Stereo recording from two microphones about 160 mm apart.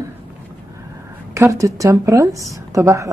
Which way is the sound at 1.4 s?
20° right (ahead or behind).